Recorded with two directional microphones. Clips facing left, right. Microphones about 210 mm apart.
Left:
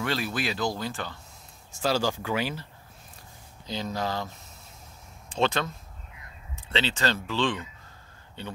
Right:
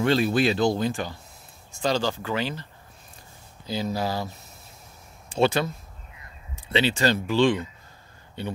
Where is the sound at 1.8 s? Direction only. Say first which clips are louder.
Right 1 dB; 10° left (ahead or behind).